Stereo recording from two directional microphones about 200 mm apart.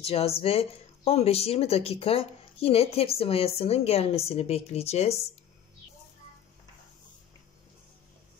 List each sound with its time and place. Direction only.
0.0 s speech: 30° left (ahead or behind)